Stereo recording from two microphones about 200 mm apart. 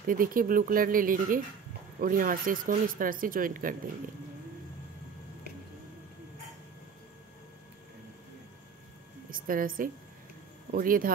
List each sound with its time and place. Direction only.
0.0 s speech: 45° right (ahead or behind)
9.3 s a woman's voice: 45° right (ahead or behind)